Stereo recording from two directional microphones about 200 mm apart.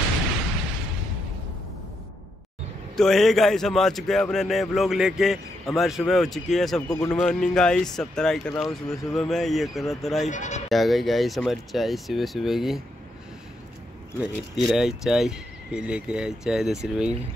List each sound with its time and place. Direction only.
3.0 s speech: centre (ahead or behind)
10.2 s speech: 35° left (ahead or behind)
10.7 s speech: centre (ahead or behind)
14.2 s speech: centre (ahead or behind)